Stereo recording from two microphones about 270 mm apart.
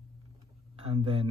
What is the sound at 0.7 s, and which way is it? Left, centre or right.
Speech, right.